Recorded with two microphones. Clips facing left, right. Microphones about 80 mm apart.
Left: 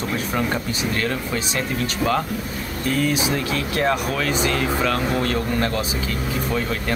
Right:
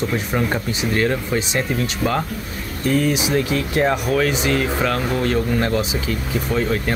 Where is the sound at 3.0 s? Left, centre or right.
Centre.